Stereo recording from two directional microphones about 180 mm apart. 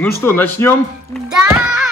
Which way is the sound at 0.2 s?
10° left (ahead or behind).